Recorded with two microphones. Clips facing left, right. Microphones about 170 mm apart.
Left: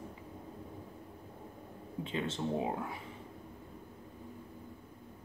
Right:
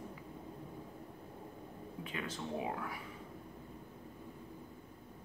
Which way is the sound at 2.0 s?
25° left (ahead or behind).